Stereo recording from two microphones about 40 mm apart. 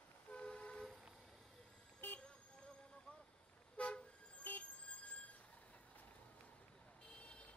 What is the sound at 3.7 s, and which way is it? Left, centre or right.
Toot, left.